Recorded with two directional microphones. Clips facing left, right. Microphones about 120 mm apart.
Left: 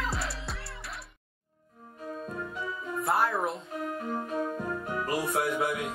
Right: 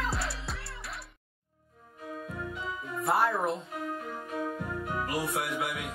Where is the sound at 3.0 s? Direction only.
Centre (ahead or behind).